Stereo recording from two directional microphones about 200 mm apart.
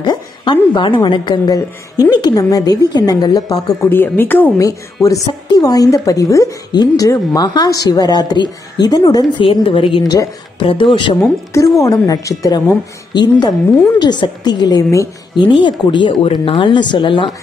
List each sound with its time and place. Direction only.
0.0 s a woman's voice: 20° left (ahead or behind)